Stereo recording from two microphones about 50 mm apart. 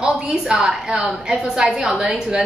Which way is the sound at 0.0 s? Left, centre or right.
Centre.